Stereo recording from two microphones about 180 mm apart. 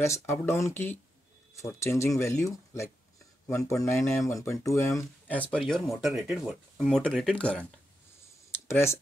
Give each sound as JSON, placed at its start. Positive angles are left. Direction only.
{"t": 0.3, "sound": "speech", "side_deg": 15}
{"t": 8.6, "sound": "speech", "side_deg": 15}